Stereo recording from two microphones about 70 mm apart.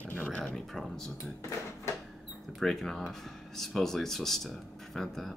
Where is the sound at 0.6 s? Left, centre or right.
Centre.